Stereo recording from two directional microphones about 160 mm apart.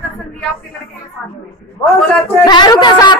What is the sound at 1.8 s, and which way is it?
A woman's voice, 20° left (ahead or behind).